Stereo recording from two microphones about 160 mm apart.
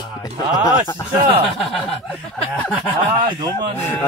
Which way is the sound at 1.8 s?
Centre (ahead or behind).